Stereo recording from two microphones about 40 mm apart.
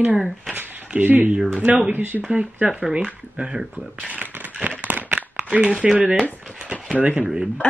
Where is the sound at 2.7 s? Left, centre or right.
Centre.